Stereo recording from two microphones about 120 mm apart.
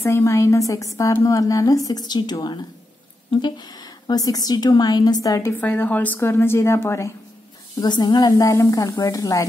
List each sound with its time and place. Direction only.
0.0 s a woman's voice: 25° left (ahead or behind)
5.6 s a woman's voice: 15° left (ahead or behind)
7.8 s a woman's voice: 35° left (ahead or behind)